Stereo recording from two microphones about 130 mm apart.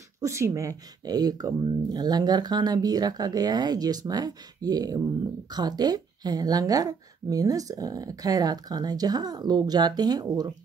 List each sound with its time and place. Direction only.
0.2 s speech: 20° right (ahead or behind)